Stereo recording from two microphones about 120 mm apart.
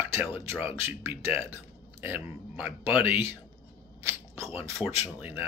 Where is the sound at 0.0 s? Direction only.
15° right (ahead or behind).